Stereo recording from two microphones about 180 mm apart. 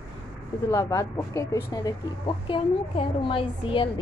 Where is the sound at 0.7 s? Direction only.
15° left (ahead or behind).